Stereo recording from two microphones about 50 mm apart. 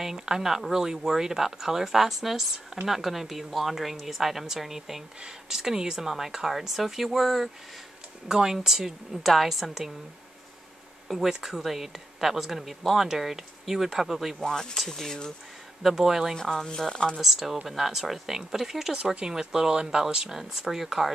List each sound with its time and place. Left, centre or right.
0.0 s speech: centre
8.3 s speech: centre
11.1 s speech: centre
14.4 s speech: centre
15.8 s speech: centre
16.3 s speech: centre
17.2 s speech: centre